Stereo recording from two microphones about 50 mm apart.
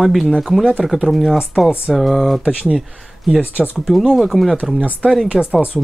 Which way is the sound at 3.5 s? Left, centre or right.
Right.